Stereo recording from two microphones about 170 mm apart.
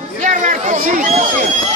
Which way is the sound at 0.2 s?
50° right (ahead or behind).